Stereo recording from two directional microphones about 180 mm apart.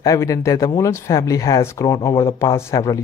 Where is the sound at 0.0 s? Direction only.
20° left (ahead or behind).